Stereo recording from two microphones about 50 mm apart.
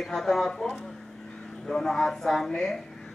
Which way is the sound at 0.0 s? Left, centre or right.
Centre.